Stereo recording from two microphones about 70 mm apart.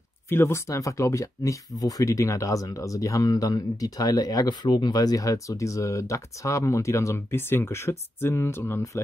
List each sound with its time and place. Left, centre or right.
0.3 s speech: left
0.7 s speech: left